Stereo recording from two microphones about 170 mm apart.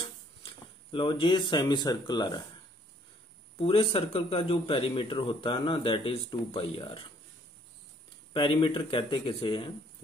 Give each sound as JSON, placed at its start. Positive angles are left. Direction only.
{"t": 0.0, "sound": "speech", "side_deg": 30}
{"t": 3.5, "sound": "speech", "side_deg": 35}
{"t": 8.3, "sound": "speech", "side_deg": 30}